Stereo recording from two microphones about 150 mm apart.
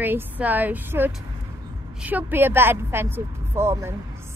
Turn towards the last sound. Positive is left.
turn(degrees=-15)  # may be behind; listen again after turning